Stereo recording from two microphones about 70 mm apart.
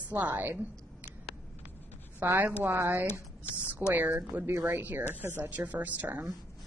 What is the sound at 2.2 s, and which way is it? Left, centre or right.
A woman's voice, right.